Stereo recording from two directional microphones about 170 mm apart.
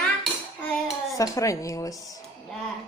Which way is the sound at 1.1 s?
20° left (ahead or behind).